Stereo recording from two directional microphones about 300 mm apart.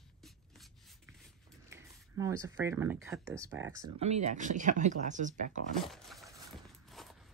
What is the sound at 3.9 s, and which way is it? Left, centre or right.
Speech, right.